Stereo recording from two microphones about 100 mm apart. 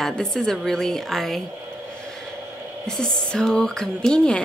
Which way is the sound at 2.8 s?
5° left (ahead or behind).